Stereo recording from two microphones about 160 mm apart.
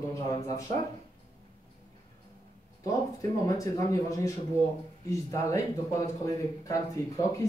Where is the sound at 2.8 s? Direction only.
20° left (ahead or behind).